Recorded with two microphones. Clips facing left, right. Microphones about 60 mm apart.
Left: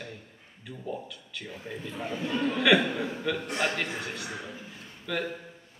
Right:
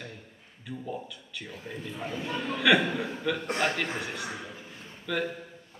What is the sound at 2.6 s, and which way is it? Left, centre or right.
Speech, centre.